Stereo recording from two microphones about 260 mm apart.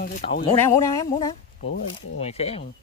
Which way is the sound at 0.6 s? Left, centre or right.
Centre.